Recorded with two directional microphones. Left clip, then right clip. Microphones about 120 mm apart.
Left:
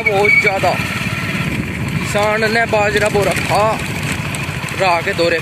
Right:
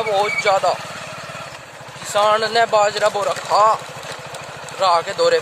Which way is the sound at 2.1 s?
5° right (ahead or behind).